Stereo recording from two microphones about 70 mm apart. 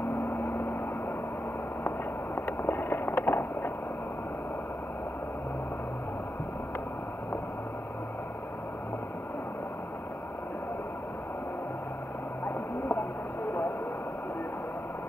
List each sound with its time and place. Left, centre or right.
0.3 s vehicle: left
1.9 s vehicle: left